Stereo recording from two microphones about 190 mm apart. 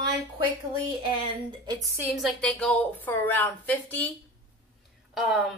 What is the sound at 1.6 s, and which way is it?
Speech, 20° right (ahead or behind).